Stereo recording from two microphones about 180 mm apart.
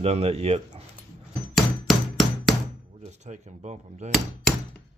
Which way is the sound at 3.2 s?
40° right (ahead or behind).